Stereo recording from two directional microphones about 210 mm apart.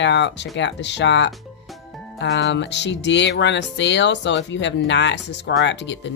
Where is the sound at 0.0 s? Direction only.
55° left (ahead or behind).